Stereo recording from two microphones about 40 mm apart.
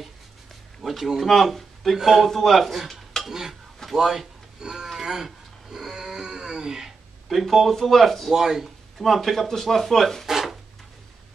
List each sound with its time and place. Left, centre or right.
0.8 s speech: centre
4.6 s speech: centre
4.9 s cat: centre
7.2 s speech: centre
8.3 s speech: centre
8.9 s speech: centre
10.2 s a sound: centre